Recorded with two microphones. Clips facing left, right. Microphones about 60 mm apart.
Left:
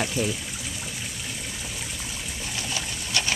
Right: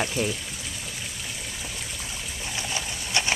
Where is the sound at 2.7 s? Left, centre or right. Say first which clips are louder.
Right 1 dB; right.